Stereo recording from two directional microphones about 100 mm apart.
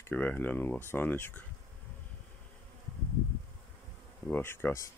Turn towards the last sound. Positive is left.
turn(degrees=20)  # may be behind; listen again after turning